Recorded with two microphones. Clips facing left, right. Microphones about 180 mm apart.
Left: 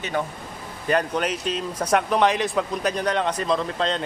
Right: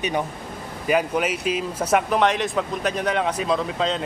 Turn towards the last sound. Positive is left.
turn(degrees=0)  # may be behind; listen again after turning